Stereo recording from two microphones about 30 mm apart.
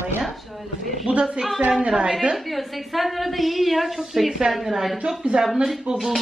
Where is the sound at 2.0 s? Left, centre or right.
Right.